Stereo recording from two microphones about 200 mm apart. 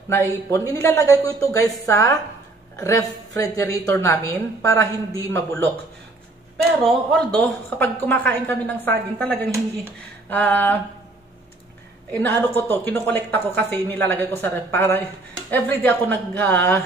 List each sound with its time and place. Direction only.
0.1 s a woman's voice: 15° left (ahead or behind)
6.8 s a woman's voice: 5° left (ahead or behind)
12.1 s a woman's voice: 10° left (ahead or behind)